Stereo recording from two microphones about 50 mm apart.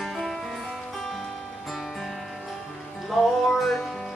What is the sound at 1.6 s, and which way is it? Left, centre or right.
Music, centre.